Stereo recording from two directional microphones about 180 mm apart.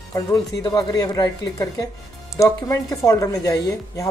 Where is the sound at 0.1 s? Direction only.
20° left (ahead or behind).